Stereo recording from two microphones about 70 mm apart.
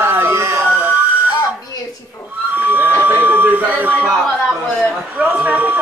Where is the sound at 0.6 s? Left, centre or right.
Right.